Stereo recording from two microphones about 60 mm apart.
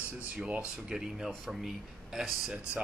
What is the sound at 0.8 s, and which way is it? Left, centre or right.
Speech, centre.